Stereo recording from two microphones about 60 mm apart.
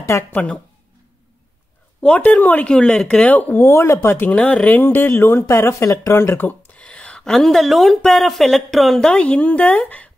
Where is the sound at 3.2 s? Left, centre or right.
Left.